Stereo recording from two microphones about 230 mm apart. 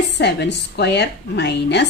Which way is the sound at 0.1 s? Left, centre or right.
Left.